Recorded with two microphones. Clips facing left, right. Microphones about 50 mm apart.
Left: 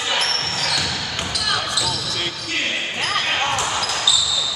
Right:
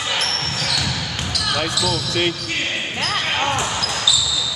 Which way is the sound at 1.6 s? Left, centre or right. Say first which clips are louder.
Right 2 dB; centre.